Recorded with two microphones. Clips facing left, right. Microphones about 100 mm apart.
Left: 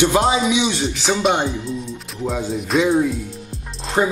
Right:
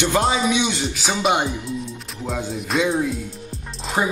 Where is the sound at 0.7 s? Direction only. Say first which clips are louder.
Left 4 dB; 5° right (ahead or behind).